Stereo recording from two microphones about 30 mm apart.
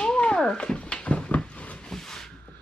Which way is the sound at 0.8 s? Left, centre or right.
Left.